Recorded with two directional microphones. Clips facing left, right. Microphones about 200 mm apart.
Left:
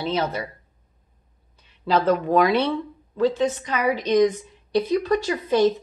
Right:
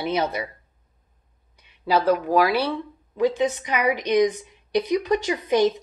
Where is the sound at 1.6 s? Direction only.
10° right (ahead or behind).